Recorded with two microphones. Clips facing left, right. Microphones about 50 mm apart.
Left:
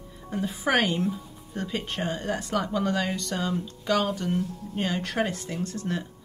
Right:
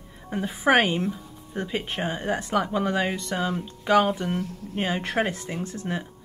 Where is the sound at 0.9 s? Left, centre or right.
Centre.